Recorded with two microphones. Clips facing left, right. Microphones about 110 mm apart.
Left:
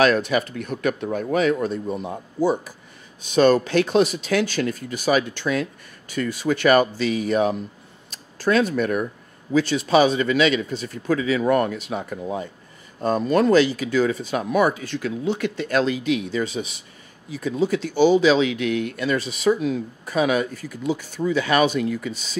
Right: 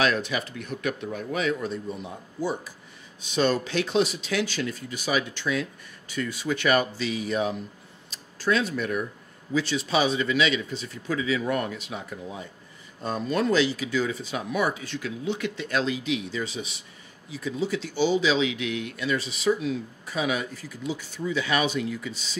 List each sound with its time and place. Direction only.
0.0 s speech: 50° left (ahead or behind)